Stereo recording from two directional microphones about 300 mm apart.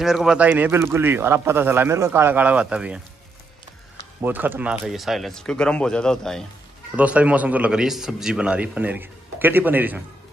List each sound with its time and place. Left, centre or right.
0.0 s speech: centre
4.2 s a man's voice: centre